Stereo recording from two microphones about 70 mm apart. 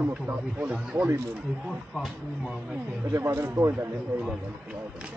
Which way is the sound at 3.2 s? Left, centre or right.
Right.